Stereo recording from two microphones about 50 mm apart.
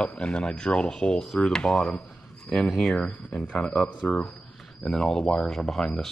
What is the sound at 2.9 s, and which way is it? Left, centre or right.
Speech, left.